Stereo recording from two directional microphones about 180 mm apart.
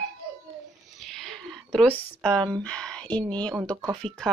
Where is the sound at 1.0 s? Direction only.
Centre (ahead or behind).